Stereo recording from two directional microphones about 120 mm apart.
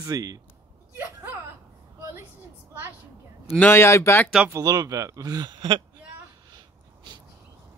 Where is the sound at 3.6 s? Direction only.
20° left (ahead or behind).